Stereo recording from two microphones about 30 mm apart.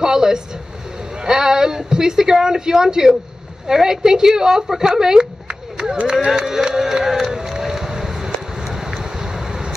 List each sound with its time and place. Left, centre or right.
0.0 s vehicle: right
1.2 s speech: right
6.2 s a sound: right